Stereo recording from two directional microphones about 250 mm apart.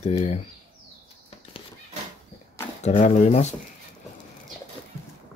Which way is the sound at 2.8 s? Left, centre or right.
Left.